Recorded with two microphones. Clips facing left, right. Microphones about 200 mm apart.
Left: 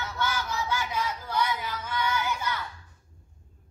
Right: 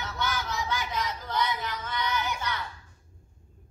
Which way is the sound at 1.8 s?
10° left (ahead or behind).